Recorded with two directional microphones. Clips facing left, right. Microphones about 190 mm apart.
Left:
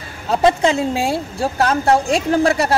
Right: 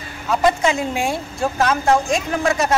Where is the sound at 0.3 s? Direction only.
30° left (ahead or behind).